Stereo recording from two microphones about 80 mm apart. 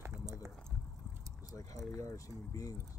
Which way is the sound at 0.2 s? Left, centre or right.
Right.